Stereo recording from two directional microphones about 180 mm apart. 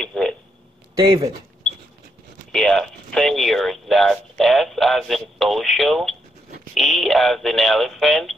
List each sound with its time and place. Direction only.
0.0 s a sound: 5° left (ahead or behind)
0.9 s speech: 20° right (ahead or behind)
2.5 s speech: centre (ahead or behind)